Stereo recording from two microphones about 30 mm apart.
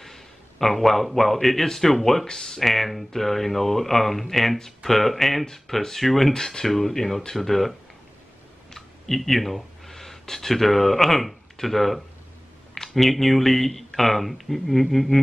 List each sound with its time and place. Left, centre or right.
0.0 s a man's voice: centre
6.3 s speech: centre
8.7 s speech: centre